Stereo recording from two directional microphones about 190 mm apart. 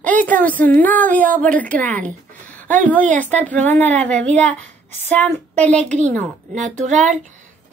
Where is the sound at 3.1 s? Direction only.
10° left (ahead or behind).